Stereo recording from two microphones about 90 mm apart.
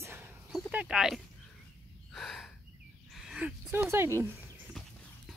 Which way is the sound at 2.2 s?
Centre (ahead or behind).